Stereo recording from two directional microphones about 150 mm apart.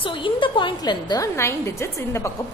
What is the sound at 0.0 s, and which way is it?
A woman's voice, 35° left (ahead or behind).